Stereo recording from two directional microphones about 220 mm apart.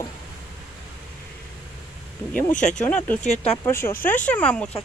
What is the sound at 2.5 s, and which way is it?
Speech, 35° left (ahead or behind).